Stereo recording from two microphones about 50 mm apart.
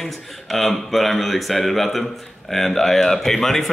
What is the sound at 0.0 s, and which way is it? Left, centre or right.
Speech, centre.